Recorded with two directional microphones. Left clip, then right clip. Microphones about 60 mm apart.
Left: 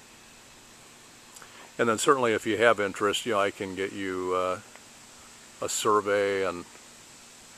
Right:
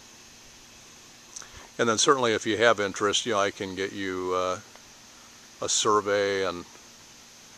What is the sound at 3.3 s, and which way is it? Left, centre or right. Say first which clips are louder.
Speech: right 1 dB; right.